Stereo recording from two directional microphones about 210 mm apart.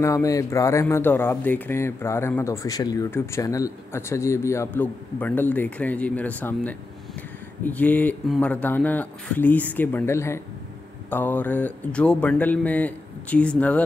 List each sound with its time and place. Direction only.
0.0 s speech: 15° left (ahead or behind)